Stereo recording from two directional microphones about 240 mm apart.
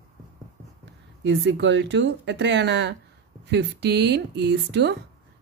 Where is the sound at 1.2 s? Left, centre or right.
Right.